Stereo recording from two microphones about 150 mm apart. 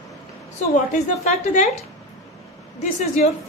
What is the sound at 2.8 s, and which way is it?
Speech, 55° left (ahead or behind).